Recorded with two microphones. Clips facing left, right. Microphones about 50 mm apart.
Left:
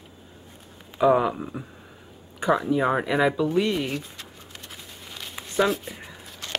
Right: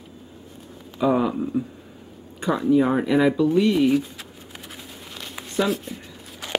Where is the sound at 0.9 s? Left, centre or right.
Centre.